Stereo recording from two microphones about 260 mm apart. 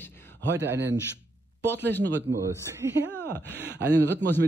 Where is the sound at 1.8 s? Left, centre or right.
Centre.